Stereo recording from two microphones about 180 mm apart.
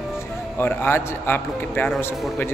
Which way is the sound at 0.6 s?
10° left (ahead or behind).